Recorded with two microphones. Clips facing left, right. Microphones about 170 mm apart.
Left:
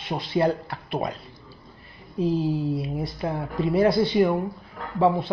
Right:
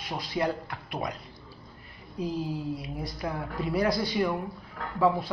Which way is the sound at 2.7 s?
25° left (ahead or behind).